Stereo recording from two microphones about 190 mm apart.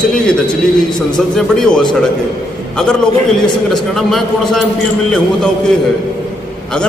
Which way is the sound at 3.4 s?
Centre (ahead or behind).